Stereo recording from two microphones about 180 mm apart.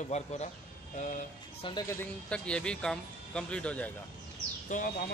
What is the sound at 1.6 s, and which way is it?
Speech, 30° left (ahead or behind).